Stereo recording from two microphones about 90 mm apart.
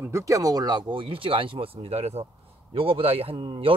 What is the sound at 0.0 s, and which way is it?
A man's voice, 35° right (ahead or behind).